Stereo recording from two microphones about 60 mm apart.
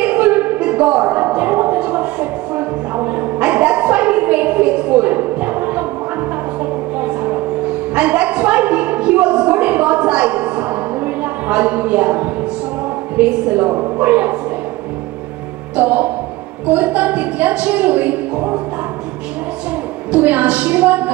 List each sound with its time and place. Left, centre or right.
0.0 s a sound: right
7.9 s a sound: right
13.2 s a woman's voice: centre
15.7 s music: right
16.6 s a woman's voice: right
20.1 s a woman's voice: right